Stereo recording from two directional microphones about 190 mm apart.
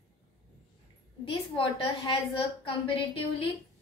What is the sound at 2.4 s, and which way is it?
A woman's voice, 30° left (ahead or behind).